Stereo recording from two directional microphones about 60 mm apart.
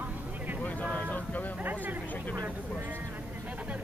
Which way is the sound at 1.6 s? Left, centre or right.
Right.